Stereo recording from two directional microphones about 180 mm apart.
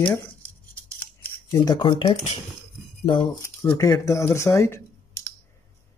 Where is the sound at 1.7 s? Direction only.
25° left (ahead or behind).